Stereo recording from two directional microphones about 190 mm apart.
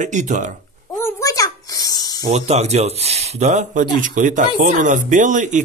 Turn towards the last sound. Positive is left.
turn(degrees=-40)  # may be behind; listen again after turning